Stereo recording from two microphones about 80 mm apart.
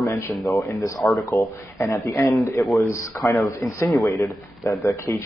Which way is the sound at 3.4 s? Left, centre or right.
Left.